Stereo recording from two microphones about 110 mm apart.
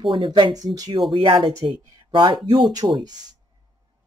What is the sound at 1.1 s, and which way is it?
Speech, 50° right (ahead or behind).